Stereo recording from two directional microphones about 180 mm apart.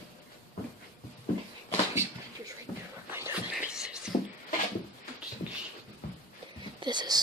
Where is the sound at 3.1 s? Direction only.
10° right (ahead or behind).